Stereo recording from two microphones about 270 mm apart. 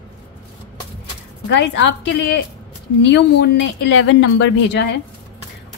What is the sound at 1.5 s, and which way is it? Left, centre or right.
A woman's voice, left.